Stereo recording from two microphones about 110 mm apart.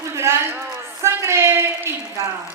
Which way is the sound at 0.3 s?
25° right (ahead or behind).